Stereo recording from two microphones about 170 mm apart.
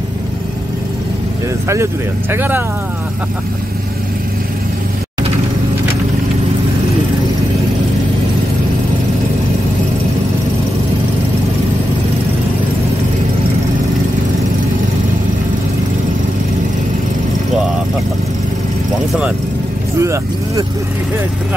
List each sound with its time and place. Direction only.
2.3 s speech: 10° right (ahead or behind)
20.0 s vehicle: 15° right (ahead or behind)